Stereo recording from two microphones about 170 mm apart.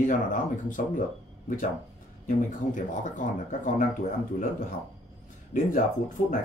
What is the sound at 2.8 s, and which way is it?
Speech, 50° left (ahead or behind).